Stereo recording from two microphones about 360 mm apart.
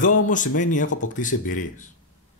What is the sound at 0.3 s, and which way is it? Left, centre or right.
Speech, left.